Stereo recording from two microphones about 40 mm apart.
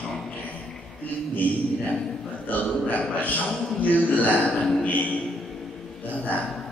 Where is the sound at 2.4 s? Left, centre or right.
Left.